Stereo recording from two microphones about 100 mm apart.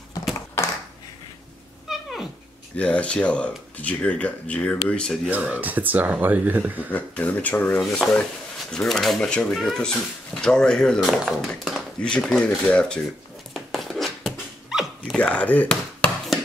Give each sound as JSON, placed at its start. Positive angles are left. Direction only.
{"t": 1.9, "sound": "dog", "side_deg": -5}
{"t": 2.7, "sound": "speech", "side_deg": 10}
{"t": 5.3, "sound": "speech", "side_deg": -15}
{"t": 6.9, "sound": "speech", "side_deg": 15}
{"t": 12.0, "sound": "speech", "side_deg": 5}
{"t": 13.5, "sound": "a sound", "side_deg": 0}
{"t": 14.7, "sound": "dog", "side_deg": -5}
{"t": 15.1, "sound": "speech", "side_deg": 15}